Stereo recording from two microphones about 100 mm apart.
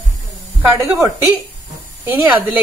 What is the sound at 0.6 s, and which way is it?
Speech, 30° right (ahead or behind).